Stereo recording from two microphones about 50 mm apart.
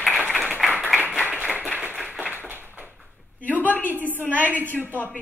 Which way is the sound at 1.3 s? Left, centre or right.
Right.